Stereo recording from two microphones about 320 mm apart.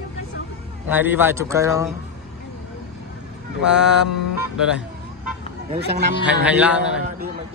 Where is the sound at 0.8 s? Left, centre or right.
Centre.